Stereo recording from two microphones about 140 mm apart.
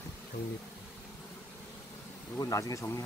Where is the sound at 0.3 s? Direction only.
90° left.